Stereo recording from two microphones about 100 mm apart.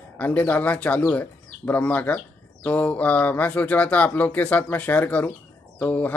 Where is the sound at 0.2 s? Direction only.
15° left (ahead or behind).